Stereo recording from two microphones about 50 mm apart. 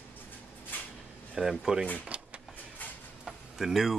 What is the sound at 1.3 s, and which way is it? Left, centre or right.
Speech, centre.